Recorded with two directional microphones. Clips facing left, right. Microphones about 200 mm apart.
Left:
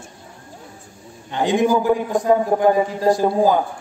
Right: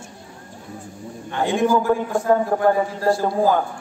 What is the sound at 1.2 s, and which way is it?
A man's voice, 15° left (ahead or behind).